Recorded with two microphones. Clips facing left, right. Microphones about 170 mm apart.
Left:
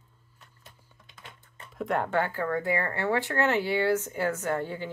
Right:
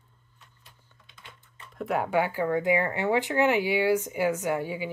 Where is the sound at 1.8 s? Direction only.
5° right (ahead or behind).